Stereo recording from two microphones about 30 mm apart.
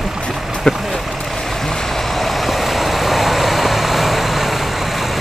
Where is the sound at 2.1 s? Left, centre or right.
Centre.